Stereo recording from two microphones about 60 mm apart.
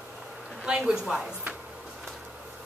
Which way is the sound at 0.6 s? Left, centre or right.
Centre.